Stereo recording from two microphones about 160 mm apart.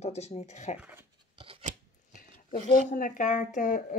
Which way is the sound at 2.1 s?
55° left (ahead or behind).